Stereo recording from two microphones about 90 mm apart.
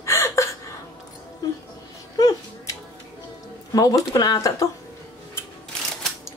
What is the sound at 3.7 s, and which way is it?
Speech, 45° left (ahead or behind).